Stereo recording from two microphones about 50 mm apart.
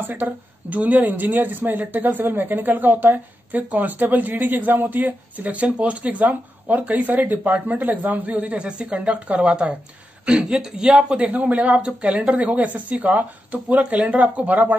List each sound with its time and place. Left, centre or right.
0.1 s speech: right